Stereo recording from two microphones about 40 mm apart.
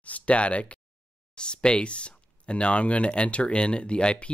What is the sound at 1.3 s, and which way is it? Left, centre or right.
Speech, left.